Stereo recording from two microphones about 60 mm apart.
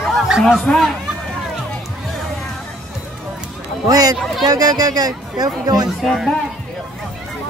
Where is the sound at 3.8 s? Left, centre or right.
Right.